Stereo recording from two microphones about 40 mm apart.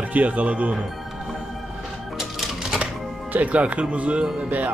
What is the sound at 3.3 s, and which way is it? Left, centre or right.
Speech, right.